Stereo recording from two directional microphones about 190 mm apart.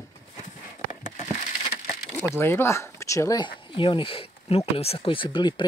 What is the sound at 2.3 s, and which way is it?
Speech, 10° left (ahead or behind).